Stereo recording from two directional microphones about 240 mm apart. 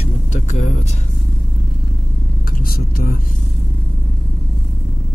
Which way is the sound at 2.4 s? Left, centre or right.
Left.